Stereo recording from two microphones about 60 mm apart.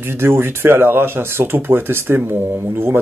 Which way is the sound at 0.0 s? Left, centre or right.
Right.